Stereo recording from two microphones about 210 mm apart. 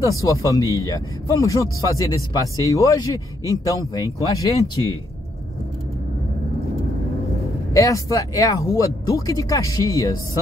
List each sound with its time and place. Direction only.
0.2 s speech: 15° left (ahead or behind)
7.7 s speech: 15° left (ahead or behind)